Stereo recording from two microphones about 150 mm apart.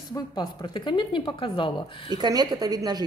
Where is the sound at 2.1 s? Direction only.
30° right (ahead or behind).